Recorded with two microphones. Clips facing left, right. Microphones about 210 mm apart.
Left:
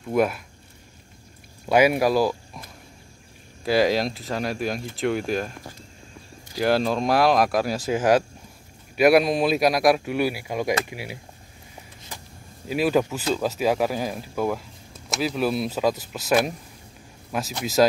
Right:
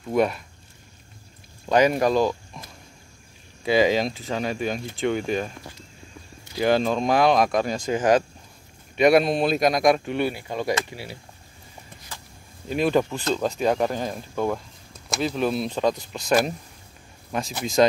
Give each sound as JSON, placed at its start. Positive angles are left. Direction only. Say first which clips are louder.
{"t": 0.0, "sound": "speech", "louder": "even", "side_deg": 0}
{"t": 1.7, "sound": "speech", "louder": "left 1 dB", "side_deg": 10}
{"t": 3.6, "sound": "speech", "louder": "right 1 dB", "side_deg": 0}
{"t": 6.6, "sound": "speech", "louder": "right 1 dB", "side_deg": 5}
{"t": 12.1, "sound": "vehicle", "louder": "left 2 dB", "side_deg": 15}
{"t": 12.6, "sound": "speech", "louder": "even", "side_deg": 5}